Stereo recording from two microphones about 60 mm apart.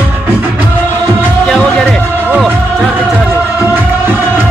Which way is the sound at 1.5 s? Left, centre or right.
Left.